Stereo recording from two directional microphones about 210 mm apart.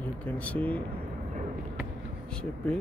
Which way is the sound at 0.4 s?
5° left (ahead or behind).